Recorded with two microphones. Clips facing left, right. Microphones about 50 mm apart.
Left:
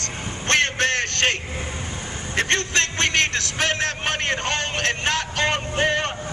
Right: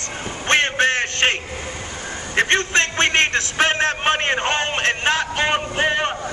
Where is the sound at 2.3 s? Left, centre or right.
Right.